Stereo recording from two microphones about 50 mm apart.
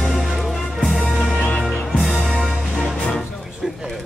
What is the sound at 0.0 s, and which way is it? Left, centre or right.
Music, centre.